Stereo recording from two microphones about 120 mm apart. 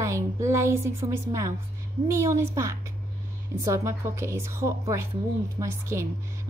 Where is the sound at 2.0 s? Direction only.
25° right (ahead or behind).